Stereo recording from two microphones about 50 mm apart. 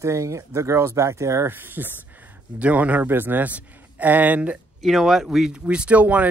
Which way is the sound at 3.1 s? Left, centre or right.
Right.